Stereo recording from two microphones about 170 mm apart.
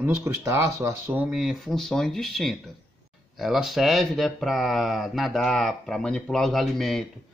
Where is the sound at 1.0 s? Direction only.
5° right (ahead or behind).